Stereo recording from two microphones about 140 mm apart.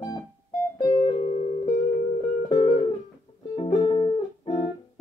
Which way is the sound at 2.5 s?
45° left (ahead or behind).